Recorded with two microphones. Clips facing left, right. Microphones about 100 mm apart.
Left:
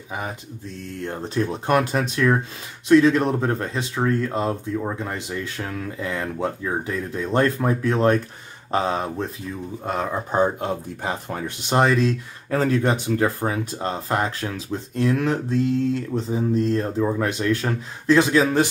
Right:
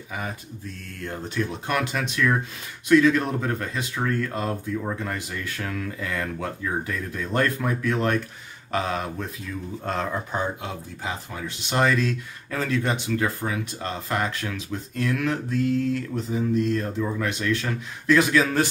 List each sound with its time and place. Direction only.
0.1 s speech: 20° left (ahead or behind)
9.8 s speech: 10° left (ahead or behind)
10.3 s speech: 40° left (ahead or behind)
11.7 s speech: 25° left (ahead or behind)